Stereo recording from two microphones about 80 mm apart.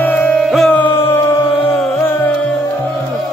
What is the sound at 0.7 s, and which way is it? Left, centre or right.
Music, left.